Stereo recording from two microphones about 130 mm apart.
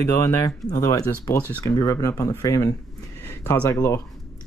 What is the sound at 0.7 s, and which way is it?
Speech, 25° left (ahead or behind).